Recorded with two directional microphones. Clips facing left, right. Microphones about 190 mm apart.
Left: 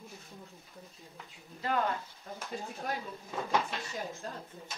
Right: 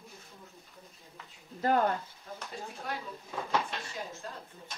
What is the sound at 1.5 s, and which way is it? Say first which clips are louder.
Speech: right 5 dB; 45° right (ahead or behind).